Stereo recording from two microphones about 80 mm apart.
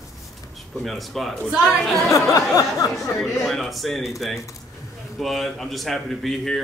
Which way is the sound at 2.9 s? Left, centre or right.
Centre.